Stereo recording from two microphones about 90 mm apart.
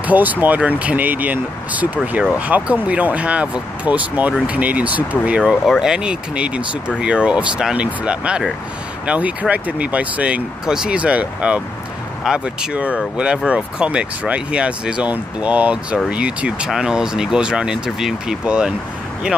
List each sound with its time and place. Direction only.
0.0 s speech: 20° right (ahead or behind)